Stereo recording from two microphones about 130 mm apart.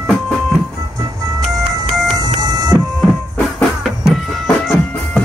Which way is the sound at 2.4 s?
30° right (ahead or behind).